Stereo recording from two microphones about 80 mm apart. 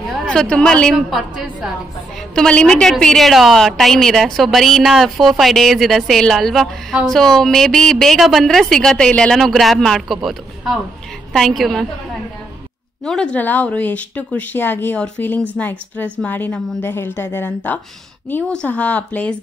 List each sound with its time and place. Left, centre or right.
0.1 s a woman's voice: centre
0.9 s a woman's voice: centre
2.3 s a woman's voice: centre
13.0 s speech: centre
16.8 s speech: left
18.5 s speech: centre